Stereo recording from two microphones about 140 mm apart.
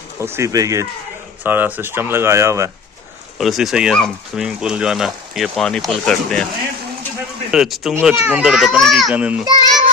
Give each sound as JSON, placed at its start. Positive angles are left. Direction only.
{"t": 0.2, "sound": "speech", "side_deg": -20}
{"t": 1.4, "sound": "speech", "side_deg": -15}
{"t": 3.3, "sound": "speech", "side_deg": 0}
{"t": 7.5, "sound": "speech", "side_deg": 0}
{"t": 9.1, "sound": "speech", "side_deg": -10}
{"t": 9.4, "sound": "child singing", "side_deg": -25}